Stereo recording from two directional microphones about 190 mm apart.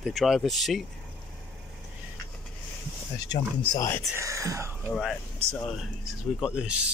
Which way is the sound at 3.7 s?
15° left (ahead or behind).